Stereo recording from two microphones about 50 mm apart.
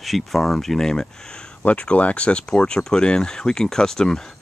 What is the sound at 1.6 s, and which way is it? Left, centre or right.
Speech, left.